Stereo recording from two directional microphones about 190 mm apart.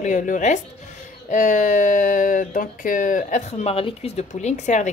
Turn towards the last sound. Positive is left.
turn(degrees=40)  # may be behind; listen again after turning